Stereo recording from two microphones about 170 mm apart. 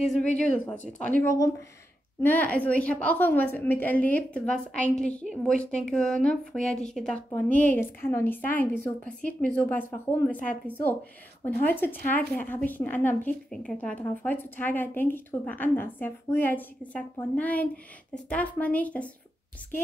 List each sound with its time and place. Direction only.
0.0 s speech: centre (ahead or behind)
1.2 s a woman's voice: 20° left (ahead or behind)